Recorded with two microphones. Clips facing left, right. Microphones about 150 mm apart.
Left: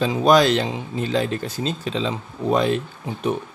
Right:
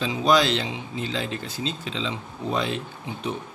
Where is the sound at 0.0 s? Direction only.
50° left (ahead or behind).